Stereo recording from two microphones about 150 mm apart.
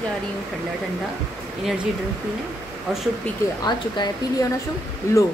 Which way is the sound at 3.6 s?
30° left (ahead or behind).